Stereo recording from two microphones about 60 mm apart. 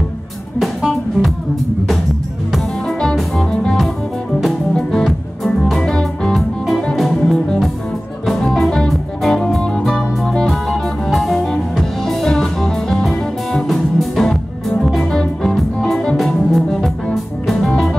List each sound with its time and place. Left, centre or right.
0.6 s music: centre
2.5 s music: centre
5.0 s music: centre
9.4 s music: centre